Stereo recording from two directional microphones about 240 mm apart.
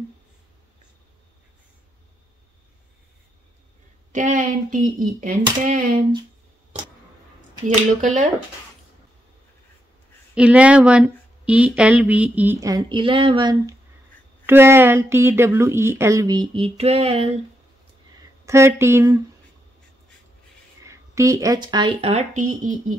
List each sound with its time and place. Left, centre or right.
4.1 s speech: right
7.6 s speech: right
10.3 s speech: centre; by 17.4 s right
18.4 s speech: centre
20.8 s speech: centre; by 22.9 s right